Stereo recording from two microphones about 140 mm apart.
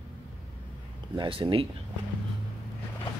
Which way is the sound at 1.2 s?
40° right (ahead or behind).